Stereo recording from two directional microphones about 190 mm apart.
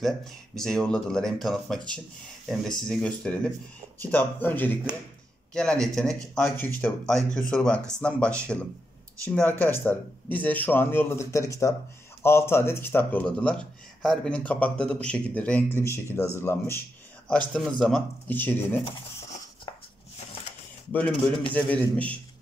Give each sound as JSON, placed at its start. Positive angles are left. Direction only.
{"t": 0.0, "sound": "speech", "side_deg": 0}
{"t": 18.9, "sound": "a sound", "side_deg": 30}
{"t": 21.1, "sound": "a man's voice", "side_deg": 25}
{"t": 21.5, "sound": "speech", "side_deg": 5}